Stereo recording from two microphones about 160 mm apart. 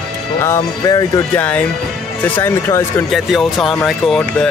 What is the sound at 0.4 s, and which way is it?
Speech, 20° left (ahead or behind).